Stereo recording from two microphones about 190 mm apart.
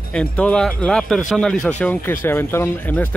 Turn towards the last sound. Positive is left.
turn(degrees=10)  # may be behind; listen again after turning